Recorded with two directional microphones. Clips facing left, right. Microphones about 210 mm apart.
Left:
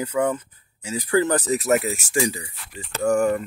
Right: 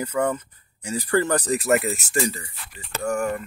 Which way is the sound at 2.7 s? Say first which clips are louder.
Left 5 dB; 35° left (ahead or behind).